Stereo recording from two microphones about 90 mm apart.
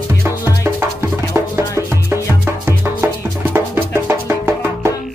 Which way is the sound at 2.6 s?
20° right (ahead or behind).